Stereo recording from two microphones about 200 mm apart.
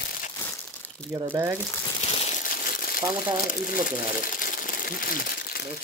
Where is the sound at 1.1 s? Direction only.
15° right (ahead or behind).